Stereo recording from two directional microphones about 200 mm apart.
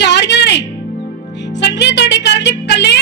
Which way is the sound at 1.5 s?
60° left (ahead or behind).